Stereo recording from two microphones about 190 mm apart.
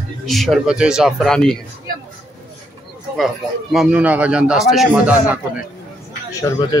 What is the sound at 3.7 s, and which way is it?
Speech, 5° right (ahead or behind).